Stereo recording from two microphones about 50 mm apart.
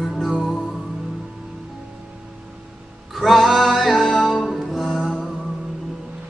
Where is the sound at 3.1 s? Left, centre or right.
Centre.